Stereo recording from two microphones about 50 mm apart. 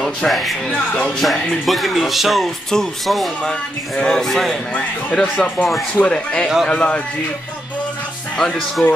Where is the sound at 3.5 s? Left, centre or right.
Left.